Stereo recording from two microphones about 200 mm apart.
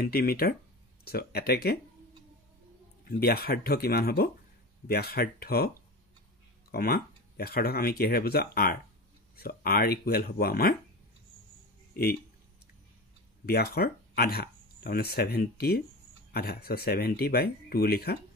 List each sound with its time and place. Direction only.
0.0 s speech: 50° left (ahead or behind)
3.1 s speech: 50° left (ahead or behind)
6.7 s speech: 50° left (ahead or behind)
11.9 s speech: 50° left (ahead or behind)
13.5 s speech: 50° left (ahead or behind)